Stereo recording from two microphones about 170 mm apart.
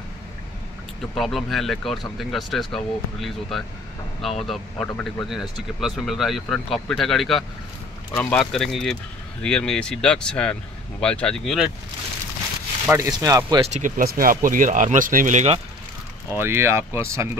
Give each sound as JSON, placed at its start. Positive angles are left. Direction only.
{"t": 1.1, "sound": "speech", "side_deg": 0}
{"t": 12.8, "sound": "speech", "side_deg": -15}
{"t": 13.7, "sound": "speech", "side_deg": -50}
{"t": 16.3, "sound": "speech", "side_deg": -15}